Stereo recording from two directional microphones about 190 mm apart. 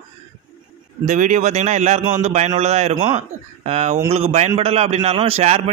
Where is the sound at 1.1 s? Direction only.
40° right (ahead or behind).